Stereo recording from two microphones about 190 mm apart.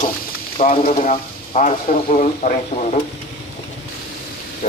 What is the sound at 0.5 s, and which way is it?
Speech, 35° left (ahead or behind).